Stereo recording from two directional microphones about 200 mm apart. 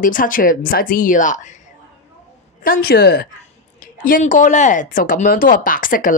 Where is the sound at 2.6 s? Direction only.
45° left (ahead or behind).